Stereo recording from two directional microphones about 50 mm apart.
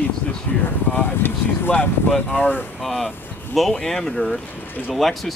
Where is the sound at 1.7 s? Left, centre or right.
Left.